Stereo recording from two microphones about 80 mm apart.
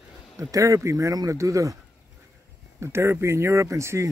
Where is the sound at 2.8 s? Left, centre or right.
Right.